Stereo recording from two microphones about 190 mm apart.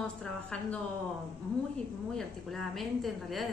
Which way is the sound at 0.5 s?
5° left (ahead or behind).